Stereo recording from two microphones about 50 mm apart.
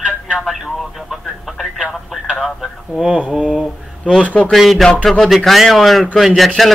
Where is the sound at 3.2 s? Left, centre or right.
Right.